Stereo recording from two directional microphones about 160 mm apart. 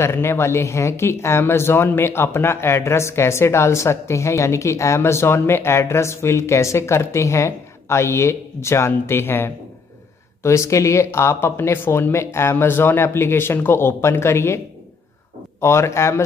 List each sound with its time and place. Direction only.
0.0 s speech: 15° left (ahead or behind)
15.6 s speech: 15° left (ahead or behind)